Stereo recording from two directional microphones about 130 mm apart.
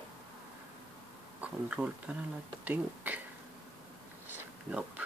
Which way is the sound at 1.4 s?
10° right (ahead or behind).